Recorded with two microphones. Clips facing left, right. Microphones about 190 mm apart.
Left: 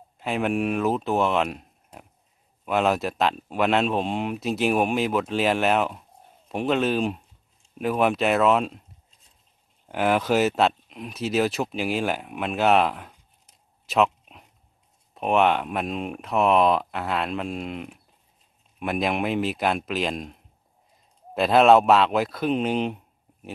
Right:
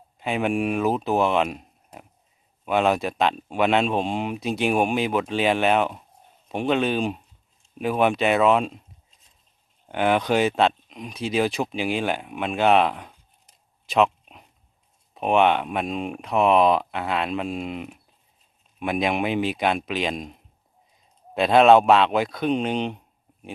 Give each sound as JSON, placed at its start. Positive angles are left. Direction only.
{"t": 0.2, "sound": "speech", "side_deg": 0}
{"t": 9.8, "sound": "speech", "side_deg": 5}
{"t": 13.8, "sound": "a sound", "side_deg": 0}
{"t": 15.1, "sound": "speech", "side_deg": 0}
{"t": 21.4, "sound": "speech", "side_deg": 0}